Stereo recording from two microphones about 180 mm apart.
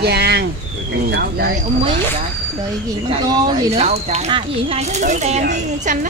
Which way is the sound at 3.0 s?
25° right (ahead or behind).